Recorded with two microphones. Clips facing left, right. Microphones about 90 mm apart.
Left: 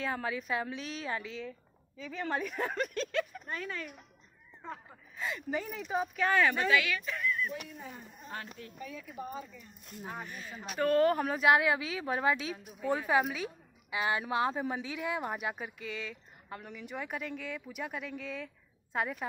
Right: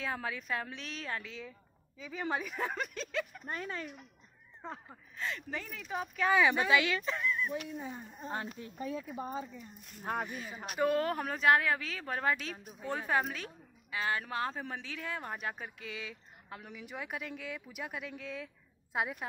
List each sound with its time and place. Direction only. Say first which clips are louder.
0.0 s a woman's voice: left 3 dB; centre (ahead or behind)
2.0 s a woman's voice: left 1 dB; 10° right (ahead or behind)
3.4 s speech: even; 30° right (ahead or behind)
4.8 s a woman's voice: left 1 dB; 5° left (ahead or behind)
6.1 s a woman's voice: right 1 dB; 5° right (ahead or behind)
6.5 s speech: even; 20° right (ahead or behind)
10.2 s a woman's voice: right 2 dB; 10° right (ahead or behind)